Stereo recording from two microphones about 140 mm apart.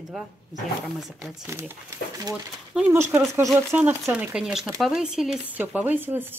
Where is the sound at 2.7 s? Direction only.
15° right (ahead or behind).